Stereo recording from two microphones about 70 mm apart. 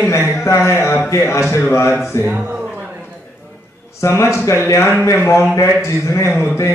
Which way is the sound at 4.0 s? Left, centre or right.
Left.